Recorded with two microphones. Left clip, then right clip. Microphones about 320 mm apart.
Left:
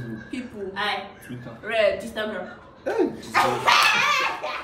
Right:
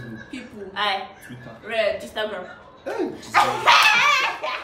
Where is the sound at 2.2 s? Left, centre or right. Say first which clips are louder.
Right 2 dB; centre.